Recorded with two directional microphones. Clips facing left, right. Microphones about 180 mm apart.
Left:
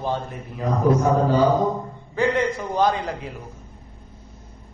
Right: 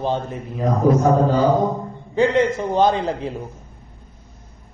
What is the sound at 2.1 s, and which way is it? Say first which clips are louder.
A man's voice: right 4 dB; 25° right (ahead or behind).